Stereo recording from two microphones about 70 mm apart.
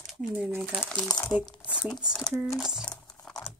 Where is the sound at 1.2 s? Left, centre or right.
Left.